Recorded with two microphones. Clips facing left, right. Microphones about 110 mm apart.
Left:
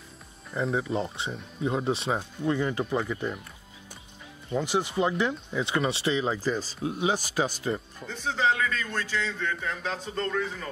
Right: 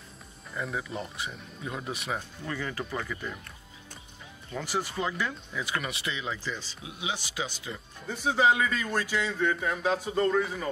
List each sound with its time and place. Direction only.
0.5 s speech: 30° left (ahead or behind)
4.5 s speech: 20° left (ahead or behind); by 7.8 s 45° left (ahead or behind)
8.1 s a man's voice: 10° right (ahead or behind)